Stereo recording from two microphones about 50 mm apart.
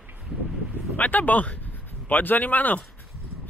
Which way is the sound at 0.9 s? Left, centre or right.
Left.